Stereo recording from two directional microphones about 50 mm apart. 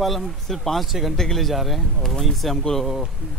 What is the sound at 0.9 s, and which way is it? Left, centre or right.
Speech, centre.